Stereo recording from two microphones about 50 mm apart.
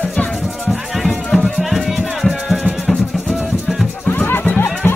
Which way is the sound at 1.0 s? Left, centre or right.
Centre.